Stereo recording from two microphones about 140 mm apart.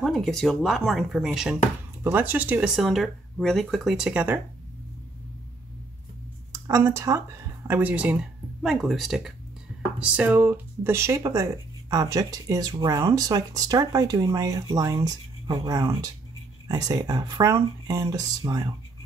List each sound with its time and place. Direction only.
0.0 s speech: centre (ahead or behind)
6.5 s speech: 20° right (ahead or behind)